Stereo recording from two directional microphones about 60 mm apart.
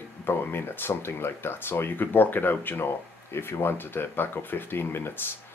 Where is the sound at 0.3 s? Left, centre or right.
Left.